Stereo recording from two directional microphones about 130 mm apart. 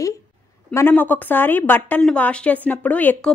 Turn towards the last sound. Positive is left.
turn(degrees=10)  # may be behind; listen again after turning